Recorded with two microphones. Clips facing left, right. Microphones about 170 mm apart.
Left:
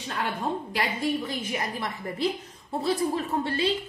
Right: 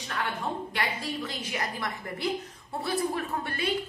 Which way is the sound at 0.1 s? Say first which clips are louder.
Left 3 dB; 25° left (ahead or behind).